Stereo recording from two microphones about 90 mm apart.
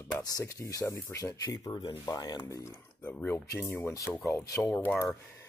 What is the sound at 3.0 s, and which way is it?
Speech, 20° left (ahead or behind).